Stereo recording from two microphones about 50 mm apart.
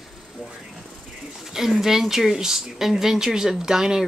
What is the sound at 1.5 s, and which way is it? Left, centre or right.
Speech, centre.